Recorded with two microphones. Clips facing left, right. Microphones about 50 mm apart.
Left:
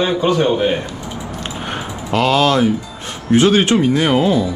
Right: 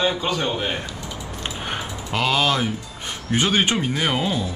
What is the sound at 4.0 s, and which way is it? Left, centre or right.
Speech, centre.